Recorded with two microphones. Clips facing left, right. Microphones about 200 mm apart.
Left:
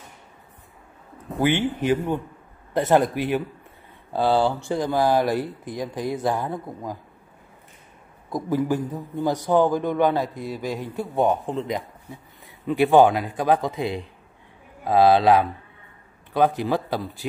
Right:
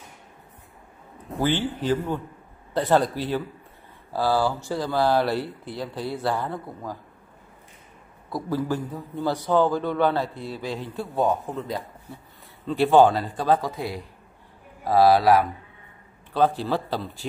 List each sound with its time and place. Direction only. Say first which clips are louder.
1.3 s speech: left 3 dB; 20° left (ahead or behind)
8.3 s a man's voice: left 3 dB; 20° left (ahead or behind)